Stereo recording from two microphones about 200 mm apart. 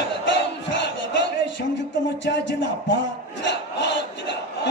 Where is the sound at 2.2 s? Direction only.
60° left (ahead or behind).